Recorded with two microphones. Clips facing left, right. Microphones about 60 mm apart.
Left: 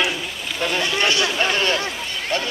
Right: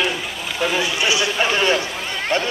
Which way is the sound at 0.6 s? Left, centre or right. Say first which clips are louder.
Right 1 dB; centre.